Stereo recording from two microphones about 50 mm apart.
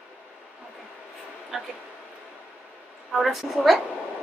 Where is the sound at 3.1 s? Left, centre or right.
Centre.